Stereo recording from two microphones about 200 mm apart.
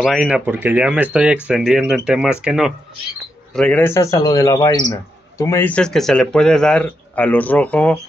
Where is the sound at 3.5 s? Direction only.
5° left (ahead or behind).